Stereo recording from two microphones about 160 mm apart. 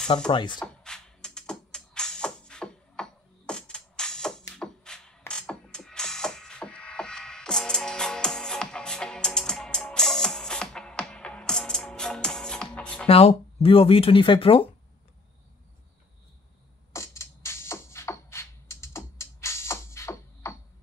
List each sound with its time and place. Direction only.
0.3 s speech: 30° left (ahead or behind)
0.8 s music: 5° left (ahead or behind)
13.0 s speech: 40° left (ahead or behind)
16.9 s music: 15° left (ahead or behind)